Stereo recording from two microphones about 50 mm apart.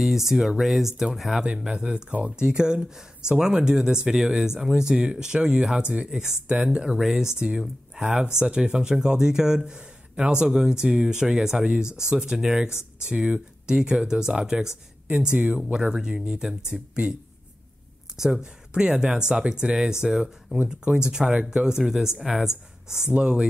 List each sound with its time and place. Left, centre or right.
0.0 s speech: centre
1.7 s speech: centre
15.0 s speech: right
18.1 s speech: centre
23.1 s speech: right